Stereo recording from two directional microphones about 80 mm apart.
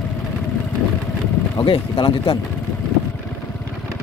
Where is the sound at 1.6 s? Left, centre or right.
Left.